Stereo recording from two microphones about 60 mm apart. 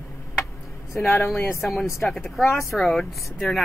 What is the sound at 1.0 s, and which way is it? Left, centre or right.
Speech, left.